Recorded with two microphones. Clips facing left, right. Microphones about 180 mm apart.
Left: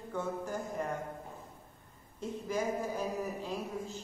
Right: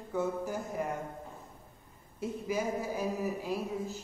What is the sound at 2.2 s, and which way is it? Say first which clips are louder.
Speech: right 1 dB; 10° right (ahead or behind).